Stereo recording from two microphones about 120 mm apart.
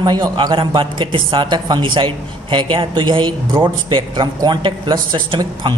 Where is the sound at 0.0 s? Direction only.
35° right (ahead or behind).